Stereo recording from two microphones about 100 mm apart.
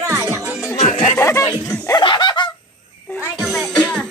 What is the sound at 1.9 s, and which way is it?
Laughter, 50° left (ahead or behind).